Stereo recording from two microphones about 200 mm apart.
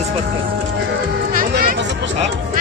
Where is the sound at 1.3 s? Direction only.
45° right (ahead or behind).